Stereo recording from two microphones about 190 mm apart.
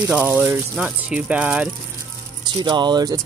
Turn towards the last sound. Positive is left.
turn(degrees=-20)  # may be behind; listen again after turning